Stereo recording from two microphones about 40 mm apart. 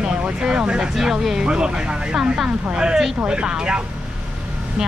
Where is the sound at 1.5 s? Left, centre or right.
Right.